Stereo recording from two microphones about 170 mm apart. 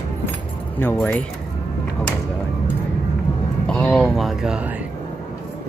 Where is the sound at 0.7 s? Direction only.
10° left (ahead or behind).